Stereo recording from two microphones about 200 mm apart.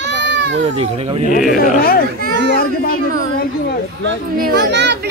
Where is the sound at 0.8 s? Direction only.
30° right (ahead or behind).